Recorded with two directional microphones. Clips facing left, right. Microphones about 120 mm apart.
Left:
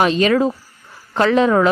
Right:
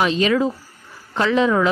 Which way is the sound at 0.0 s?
50° left (ahead or behind).